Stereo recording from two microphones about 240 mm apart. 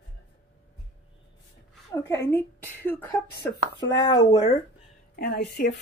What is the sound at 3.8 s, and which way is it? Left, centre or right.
Speech, centre.